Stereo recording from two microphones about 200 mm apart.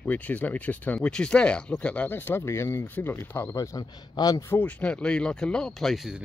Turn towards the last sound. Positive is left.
turn(degrees=0)  # may be behind; listen again after turning